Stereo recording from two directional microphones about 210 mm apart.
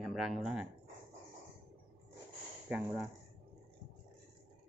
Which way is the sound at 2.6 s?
5° right (ahead or behind).